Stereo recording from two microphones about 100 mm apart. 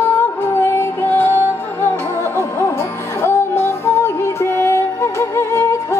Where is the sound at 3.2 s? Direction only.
25° left (ahead or behind).